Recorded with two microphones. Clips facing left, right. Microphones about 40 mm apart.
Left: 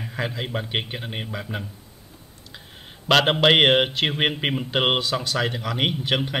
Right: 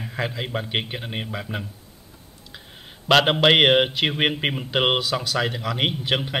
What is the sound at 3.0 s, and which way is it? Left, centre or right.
Speech, centre.